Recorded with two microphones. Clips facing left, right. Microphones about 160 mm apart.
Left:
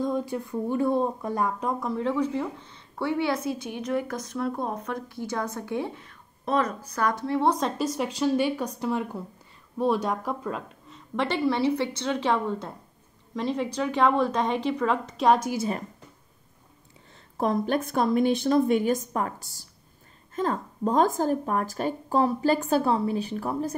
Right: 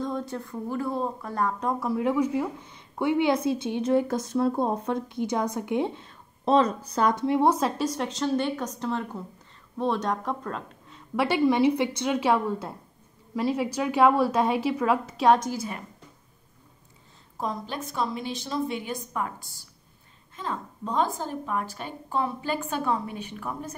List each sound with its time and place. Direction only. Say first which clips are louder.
0.0 s a woman's voice: left 3 dB; 10° left (ahead or behind)
1.6 s a woman's voice: right 1 dB; centre (ahead or behind)
7.5 s a woman's voice: even; centre (ahead or behind)
17.4 s a woman's voice: left 7 dB; 60° left (ahead or behind); by 23.8 s 35° left (ahead or behind)